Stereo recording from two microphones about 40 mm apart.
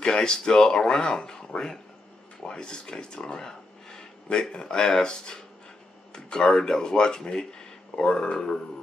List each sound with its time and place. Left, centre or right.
0.0 s speech: centre